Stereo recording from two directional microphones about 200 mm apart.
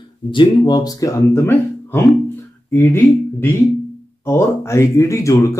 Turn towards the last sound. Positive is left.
turn(degrees=15)  # may be behind; listen again after turning